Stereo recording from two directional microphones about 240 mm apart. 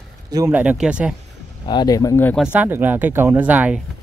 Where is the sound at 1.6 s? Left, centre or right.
Centre.